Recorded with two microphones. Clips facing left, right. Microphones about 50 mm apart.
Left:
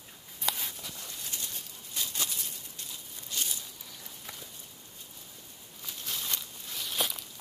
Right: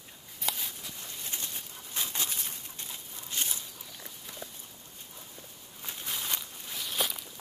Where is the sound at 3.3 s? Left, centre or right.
Right.